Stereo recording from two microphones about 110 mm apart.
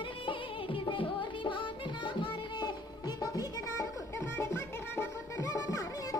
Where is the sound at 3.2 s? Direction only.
30° left (ahead or behind).